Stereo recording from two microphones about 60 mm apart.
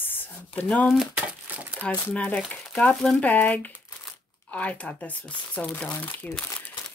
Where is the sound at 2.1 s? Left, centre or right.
Centre.